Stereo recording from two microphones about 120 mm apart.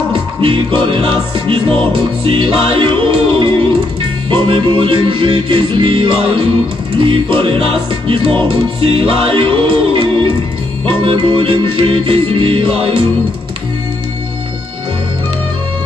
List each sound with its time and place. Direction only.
0.4 s music: 45° right (ahead or behind)